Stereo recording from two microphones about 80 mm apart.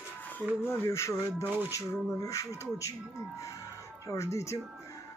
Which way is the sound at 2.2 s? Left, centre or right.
Left.